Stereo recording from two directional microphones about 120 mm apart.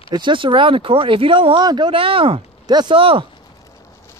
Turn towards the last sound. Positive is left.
turn(degrees=-50)  # may be behind; listen again after turning